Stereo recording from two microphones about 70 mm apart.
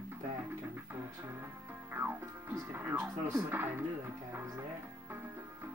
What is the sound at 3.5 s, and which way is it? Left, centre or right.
Music, right.